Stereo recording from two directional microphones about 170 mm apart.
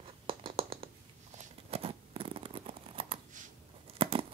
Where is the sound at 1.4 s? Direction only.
35° right (ahead or behind).